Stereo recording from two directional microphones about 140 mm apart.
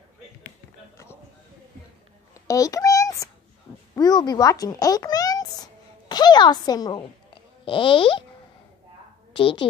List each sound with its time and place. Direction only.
2.4 s a sound: 25° left (ahead or behind)
3.9 s speech: 30° left (ahead or behind)
9.3 s a woman's voice: 40° left (ahead or behind)